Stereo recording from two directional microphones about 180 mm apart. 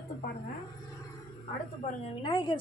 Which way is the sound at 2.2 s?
25° left (ahead or behind).